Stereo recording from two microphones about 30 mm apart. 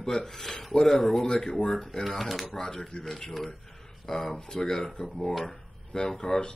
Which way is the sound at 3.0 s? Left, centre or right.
Centre.